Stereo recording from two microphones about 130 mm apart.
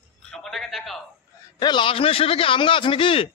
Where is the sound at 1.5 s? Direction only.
35° left (ahead or behind).